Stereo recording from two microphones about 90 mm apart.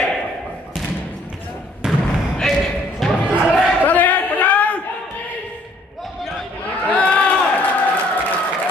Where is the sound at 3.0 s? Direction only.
5° left (ahead or behind).